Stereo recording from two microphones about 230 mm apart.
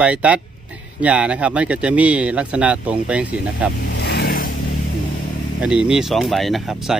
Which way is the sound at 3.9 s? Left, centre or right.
Left.